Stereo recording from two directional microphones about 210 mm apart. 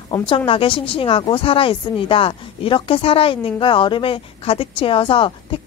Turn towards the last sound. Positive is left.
turn(degrees=25)  # may be behind; listen again after turning